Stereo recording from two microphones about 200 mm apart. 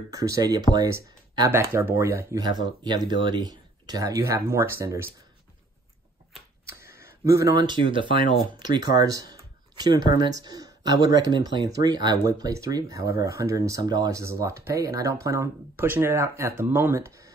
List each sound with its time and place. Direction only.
0.1 s speech: 15° right (ahead or behind)
6.7 s a sound: 15° right (ahead or behind)
7.2 s speech: 15° right (ahead or behind)